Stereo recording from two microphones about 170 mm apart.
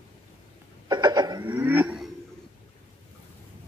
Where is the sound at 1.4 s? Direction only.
10° right (ahead or behind).